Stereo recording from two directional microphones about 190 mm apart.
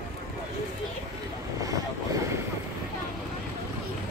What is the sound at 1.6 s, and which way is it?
Vehicle, 20° right (ahead or behind).